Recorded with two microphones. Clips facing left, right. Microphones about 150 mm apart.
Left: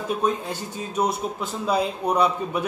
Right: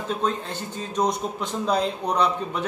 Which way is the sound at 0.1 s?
10° left (ahead or behind).